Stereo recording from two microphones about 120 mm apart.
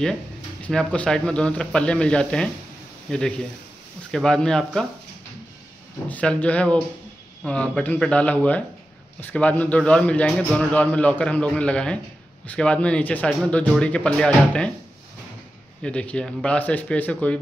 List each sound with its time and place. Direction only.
0.6 s a man's voice: 10° left (ahead or behind)
6.0 s a man's voice: 10° left (ahead or behind)
15.8 s a man's voice: 10° left (ahead or behind)